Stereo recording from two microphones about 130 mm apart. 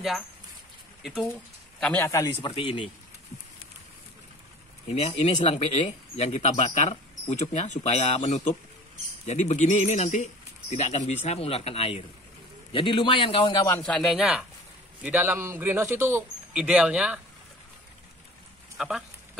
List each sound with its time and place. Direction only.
1.0 s speech: centre (ahead or behind)
2.0 s speech: 25° left (ahead or behind)
2.4 s a man's voice: 40° left (ahead or behind)
4.9 s a man's voice: 55° left (ahead or behind); by 13.7 s 40° left (ahead or behind)
13.7 s speech: 20° left (ahead or behind)
13.9 s speech: 5° right (ahead or behind)
18.8 s speech: 5° right (ahead or behind)